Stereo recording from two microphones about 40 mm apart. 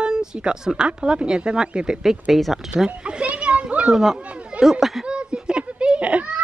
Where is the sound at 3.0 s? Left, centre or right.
Right.